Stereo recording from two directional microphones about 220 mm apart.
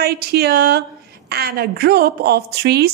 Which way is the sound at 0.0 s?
45° right (ahead or behind).